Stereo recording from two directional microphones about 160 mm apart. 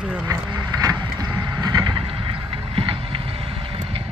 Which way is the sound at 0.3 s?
20° right (ahead or behind).